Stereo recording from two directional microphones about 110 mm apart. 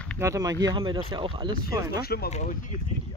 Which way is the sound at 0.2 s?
30° right (ahead or behind).